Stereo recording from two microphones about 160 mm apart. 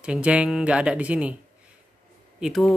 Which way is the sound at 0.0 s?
5° right (ahead or behind).